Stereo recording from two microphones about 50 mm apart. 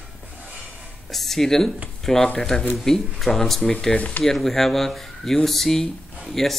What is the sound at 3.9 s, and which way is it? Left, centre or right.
Speech, left.